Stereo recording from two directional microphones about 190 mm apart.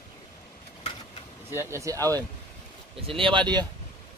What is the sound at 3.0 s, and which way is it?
Speech, 30° right (ahead or behind).